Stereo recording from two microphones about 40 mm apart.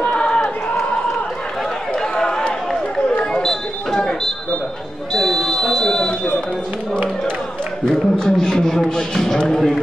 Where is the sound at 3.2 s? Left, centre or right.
Centre.